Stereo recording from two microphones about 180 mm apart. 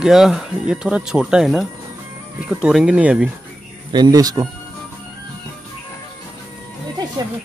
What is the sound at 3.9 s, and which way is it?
Speech, 20° right (ahead or behind).